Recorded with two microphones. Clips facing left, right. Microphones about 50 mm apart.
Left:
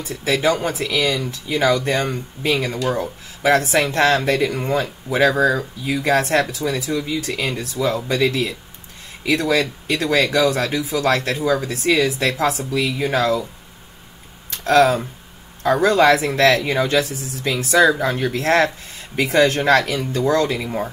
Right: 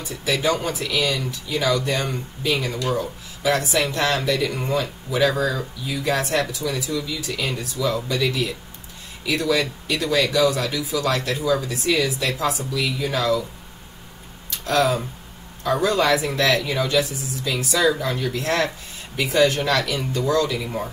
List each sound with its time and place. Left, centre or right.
0.1 s speech: left
14.6 s speech: left